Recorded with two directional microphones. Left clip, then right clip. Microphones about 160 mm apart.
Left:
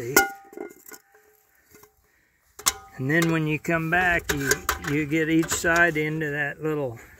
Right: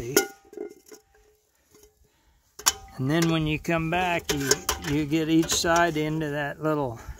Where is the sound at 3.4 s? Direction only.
5° right (ahead or behind).